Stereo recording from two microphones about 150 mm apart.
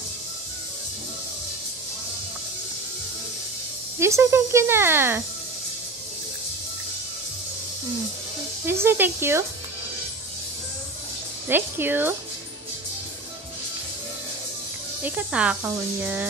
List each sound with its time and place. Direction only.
4.0 s speech: 20° right (ahead or behind)
8.6 s speech: 15° right (ahead or behind)
11.4 s speech: 15° right (ahead or behind)
15.0 s speech: 10° right (ahead or behind)